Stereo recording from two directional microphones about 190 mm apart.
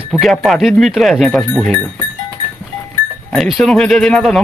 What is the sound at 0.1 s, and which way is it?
Speech, centre (ahead or behind).